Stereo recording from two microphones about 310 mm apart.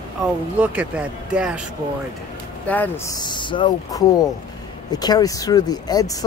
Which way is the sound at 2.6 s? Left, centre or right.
Centre.